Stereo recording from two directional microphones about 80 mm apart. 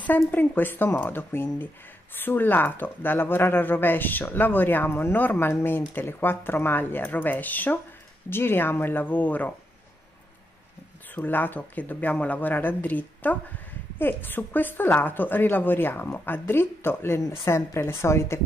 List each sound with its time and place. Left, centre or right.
0.0 s a woman's voice: left
11.1 s a woman's voice: left